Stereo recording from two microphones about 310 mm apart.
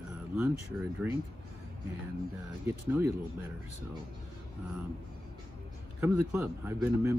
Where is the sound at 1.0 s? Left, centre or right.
Centre.